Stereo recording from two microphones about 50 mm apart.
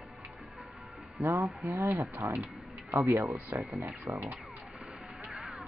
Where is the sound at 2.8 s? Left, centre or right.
Right.